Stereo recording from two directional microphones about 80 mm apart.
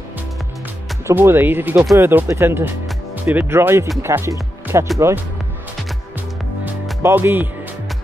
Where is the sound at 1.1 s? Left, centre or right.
Right.